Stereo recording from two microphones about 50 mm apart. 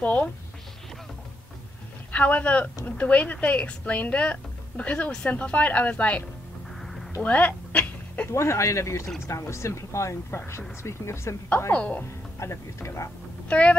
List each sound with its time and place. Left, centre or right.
0.0 s speech: left
2.1 s speech: left
6.8 s a sound: centre
7.2 s a sound: left
8.3 s speech: left
12.4 s speech: left
13.5 s speech: left